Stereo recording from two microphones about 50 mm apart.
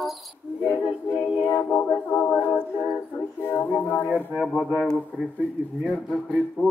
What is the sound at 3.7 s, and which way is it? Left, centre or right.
A capella, left.